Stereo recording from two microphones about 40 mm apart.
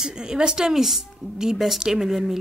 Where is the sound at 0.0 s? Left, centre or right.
Centre.